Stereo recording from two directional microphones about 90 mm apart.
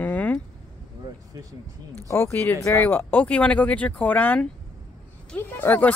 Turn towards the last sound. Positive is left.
turn(degrees=20)  # may be behind; listen again after turning